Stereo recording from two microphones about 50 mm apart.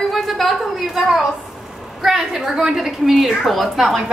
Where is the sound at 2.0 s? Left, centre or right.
Centre.